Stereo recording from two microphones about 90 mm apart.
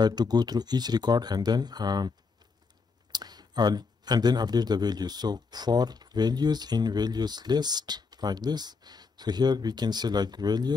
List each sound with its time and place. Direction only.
0.0 s speech: 50° right (ahead or behind)